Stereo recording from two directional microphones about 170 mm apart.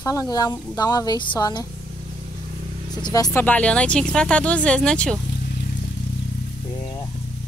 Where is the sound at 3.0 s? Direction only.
20° left (ahead or behind); by 5.1 s 5° left (ahead or behind).